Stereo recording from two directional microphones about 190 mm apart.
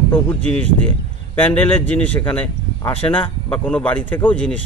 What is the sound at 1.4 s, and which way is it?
Speech, 10° left (ahead or behind).